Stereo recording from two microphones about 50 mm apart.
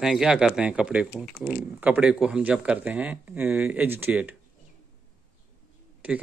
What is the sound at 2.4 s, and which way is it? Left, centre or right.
Speech, right.